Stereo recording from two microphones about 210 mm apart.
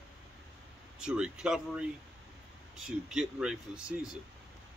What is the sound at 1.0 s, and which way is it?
Speech, 5° right (ahead or behind).